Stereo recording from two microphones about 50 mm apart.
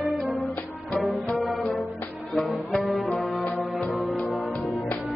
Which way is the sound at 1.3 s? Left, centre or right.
Centre.